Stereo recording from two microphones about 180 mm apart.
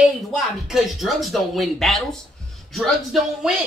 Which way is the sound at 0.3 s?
Centre (ahead or behind).